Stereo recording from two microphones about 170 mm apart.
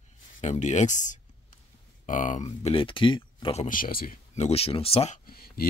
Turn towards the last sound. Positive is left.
turn(degrees=60)  # may be behind; listen again after turning